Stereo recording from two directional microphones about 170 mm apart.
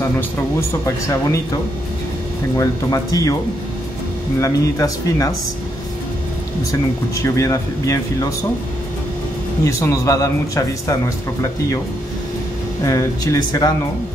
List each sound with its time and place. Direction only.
0.6 s speech: 15° left (ahead or behind)
2.5 s speech: 20° left (ahead or behind)
4.4 s speech: 20° left (ahead or behind)
6.7 s speech: 20° left (ahead or behind)
9.7 s speech: 15° left (ahead or behind)
12.8 s speech: 20° left (ahead or behind)